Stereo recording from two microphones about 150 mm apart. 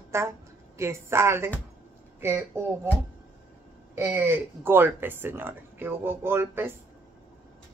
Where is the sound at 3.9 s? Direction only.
20° right (ahead or behind).